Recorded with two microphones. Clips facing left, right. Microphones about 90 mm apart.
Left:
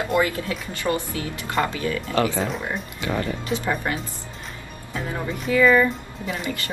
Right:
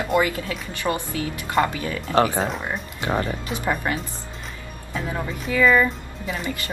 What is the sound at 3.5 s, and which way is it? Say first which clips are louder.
Speech: even; 15° right (ahead or behind).